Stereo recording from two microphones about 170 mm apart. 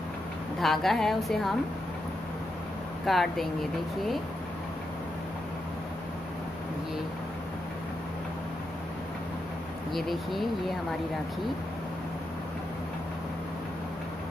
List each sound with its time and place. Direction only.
0.6 s speech: centre (ahead or behind)
3.1 s speech: centre (ahead or behind)
9.9 s speech: centre (ahead or behind)